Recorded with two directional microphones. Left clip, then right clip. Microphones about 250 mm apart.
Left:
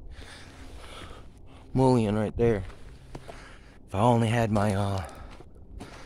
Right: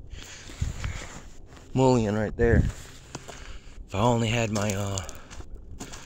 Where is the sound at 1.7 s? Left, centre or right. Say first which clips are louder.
Right 1 dB; centre.